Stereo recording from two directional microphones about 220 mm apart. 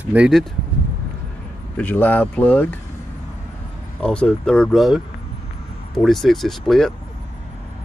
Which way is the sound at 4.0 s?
5° left (ahead or behind).